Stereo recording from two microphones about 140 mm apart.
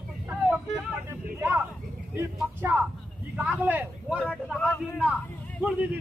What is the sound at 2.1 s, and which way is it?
Speech, 20° right (ahead or behind).